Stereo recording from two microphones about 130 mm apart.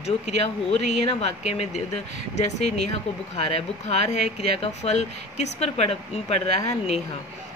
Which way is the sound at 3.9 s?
60° left (ahead or behind).